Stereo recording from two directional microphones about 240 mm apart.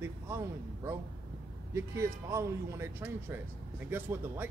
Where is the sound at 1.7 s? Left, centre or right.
Centre.